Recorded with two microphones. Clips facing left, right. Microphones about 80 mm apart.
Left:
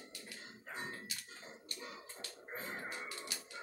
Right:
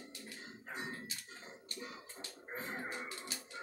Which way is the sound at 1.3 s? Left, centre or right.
Right.